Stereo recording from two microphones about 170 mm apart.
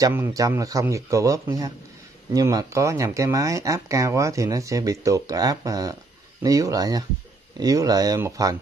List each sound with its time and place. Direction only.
0.0 s speech: 15° right (ahead or behind)